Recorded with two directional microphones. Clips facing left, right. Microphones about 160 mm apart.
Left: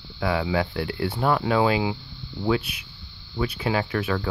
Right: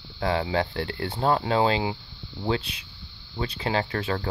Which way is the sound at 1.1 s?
25° right (ahead or behind).